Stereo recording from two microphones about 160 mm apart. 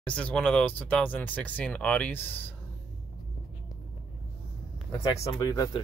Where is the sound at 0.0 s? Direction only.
5° left (ahead or behind).